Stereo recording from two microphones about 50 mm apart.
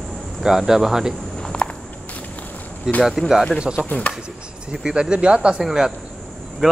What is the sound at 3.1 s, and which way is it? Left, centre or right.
Cricket, centre.